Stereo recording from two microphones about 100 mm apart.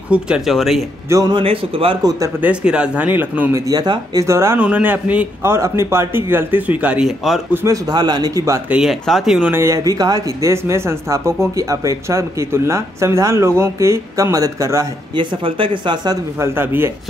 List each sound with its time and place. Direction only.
0.1 s speech: 5° right (ahead or behind)
1.3 s speech: 70° right (ahead or behind)
2.0 s speech: 35° right (ahead or behind)
2.4 s speech: 10° right (ahead or behind)
3.5 s speech: 40° right (ahead or behind)
4.6 s speech: 15° right (ahead or behind)
5.4 s speech: 25° right (ahead or behind); by 7.4 s 5° right (ahead or behind)
7.6 s speech: 35° right (ahead or behind)
8.6 s speech: 10° right (ahead or behind)
9.5 s speech: 25° right (ahead or behind)
9.8 s speech: 40° right (ahead or behind)
15.1 s speech: 60° right (ahead or behind)
16.3 s speech: 25° right (ahead or behind)